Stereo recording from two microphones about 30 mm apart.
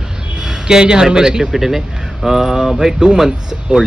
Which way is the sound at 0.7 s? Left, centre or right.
Right.